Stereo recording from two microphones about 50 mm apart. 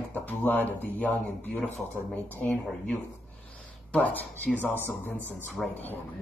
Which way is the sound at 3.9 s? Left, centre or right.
Left.